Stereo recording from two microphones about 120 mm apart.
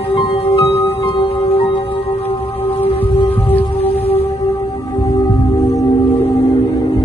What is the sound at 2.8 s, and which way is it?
Music, 50° left (ahead or behind).